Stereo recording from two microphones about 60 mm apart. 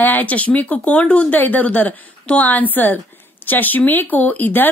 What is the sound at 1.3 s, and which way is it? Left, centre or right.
A woman's voice, left.